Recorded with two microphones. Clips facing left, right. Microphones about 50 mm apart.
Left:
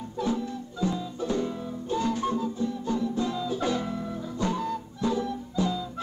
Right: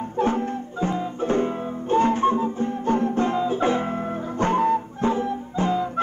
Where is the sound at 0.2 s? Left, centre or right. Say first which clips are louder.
Right 6 dB; right.